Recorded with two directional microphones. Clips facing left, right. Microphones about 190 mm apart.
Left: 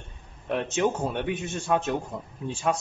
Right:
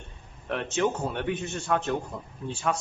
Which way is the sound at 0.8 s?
20° left (ahead or behind).